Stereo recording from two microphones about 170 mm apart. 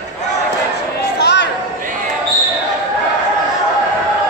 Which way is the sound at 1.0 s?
80° left.